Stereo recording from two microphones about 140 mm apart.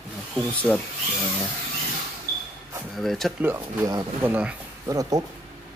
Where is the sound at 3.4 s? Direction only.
15° right (ahead or behind).